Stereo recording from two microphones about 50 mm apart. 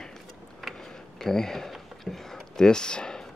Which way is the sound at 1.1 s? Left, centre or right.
Centre.